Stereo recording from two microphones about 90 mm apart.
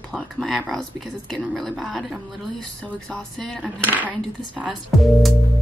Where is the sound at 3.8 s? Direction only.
15° right (ahead or behind).